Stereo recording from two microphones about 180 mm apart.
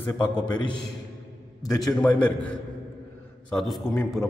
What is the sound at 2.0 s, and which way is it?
A man's voice, 5° left (ahead or behind).